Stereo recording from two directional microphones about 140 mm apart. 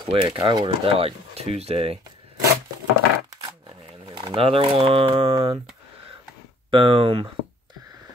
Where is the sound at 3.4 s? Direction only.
35° right (ahead or behind).